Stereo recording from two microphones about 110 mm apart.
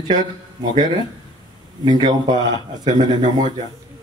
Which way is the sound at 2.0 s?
40° right (ahead or behind).